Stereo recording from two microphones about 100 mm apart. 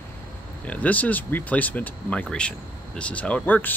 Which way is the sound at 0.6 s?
15° left (ahead or behind).